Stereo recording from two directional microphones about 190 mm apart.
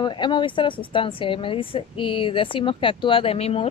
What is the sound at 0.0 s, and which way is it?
Speech, 25° left (ahead or behind).